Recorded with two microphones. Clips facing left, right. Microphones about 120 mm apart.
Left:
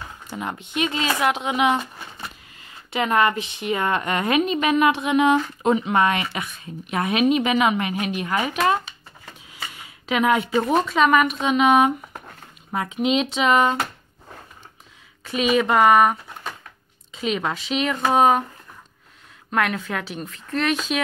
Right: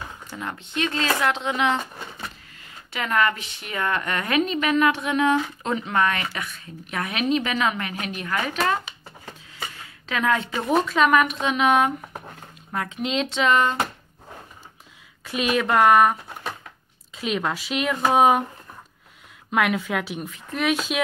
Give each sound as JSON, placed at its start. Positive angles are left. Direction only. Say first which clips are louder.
{"t": 0.3, "sound": "speech", "louder": "left 4 dB", "side_deg": 15}
{"t": 2.9, "sound": "a woman's voice", "louder": "left 3 dB", "side_deg": 20}
{"t": 9.8, "sound": "a sound", "louder": "left 6 dB", "side_deg": 15}
{"t": 10.7, "sound": "speech", "louder": "even", "side_deg": 0}
{"t": 15.2, "sound": "speech", "louder": "left 3 dB", "side_deg": 0}
{"t": 19.5, "sound": "speech", "louder": "right 1 dB", "side_deg": -5}